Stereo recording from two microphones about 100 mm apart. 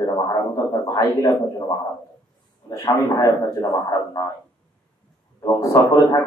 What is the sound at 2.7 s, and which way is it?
Speech, 35° left (ahead or behind).